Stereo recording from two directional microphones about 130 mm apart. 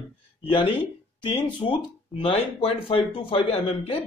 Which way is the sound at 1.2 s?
40° left (ahead or behind).